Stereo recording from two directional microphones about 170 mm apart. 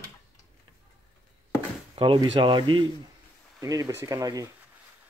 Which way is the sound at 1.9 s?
30° right (ahead or behind).